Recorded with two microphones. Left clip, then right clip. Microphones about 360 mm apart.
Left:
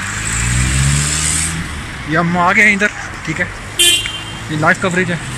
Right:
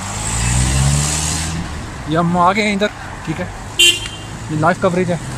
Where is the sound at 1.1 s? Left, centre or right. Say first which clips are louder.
Left 3 dB; right.